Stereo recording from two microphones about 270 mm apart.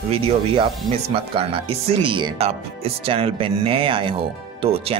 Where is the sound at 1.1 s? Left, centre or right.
Centre.